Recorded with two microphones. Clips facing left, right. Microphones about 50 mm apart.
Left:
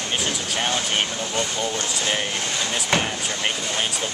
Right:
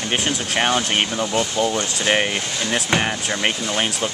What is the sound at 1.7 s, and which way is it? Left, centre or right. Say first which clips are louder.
Speech: right 5 dB; right.